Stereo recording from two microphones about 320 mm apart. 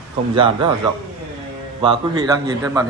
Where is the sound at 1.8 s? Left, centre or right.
Centre.